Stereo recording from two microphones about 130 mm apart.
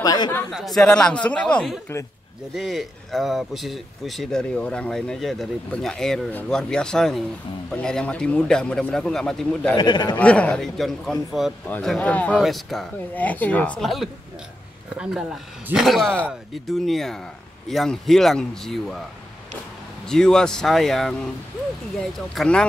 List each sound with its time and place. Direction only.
0.0 s a man's voice: 30° left (ahead or behind)
0.5 s speech: centre (ahead or behind)
9.8 s a man's voice: 35° left (ahead or behind)
10.1 s speech: 10° left (ahead or behind)
12.4 s speech: centre (ahead or behind)
13.1 s speech: 10° left (ahead or behind)
15.7 s speech: centre (ahead or behind)
20.1 s speech: 5° left (ahead or behind)
22.3 s speech: 5° left (ahead or behind)